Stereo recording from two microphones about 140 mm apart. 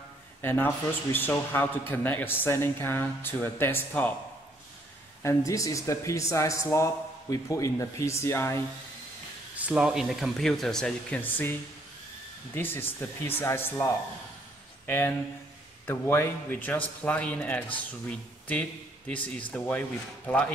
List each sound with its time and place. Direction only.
0.4 s a man's voice: 15° left (ahead or behind)
5.2 s speech: 25° left (ahead or behind)
9.6 s speech: 10° right (ahead or behind); by 11.5 s 15° left (ahead or behind)
12.5 s a man's voice: 15° left (ahead or behind)
14.9 s a man's voice: 15° left (ahead or behind)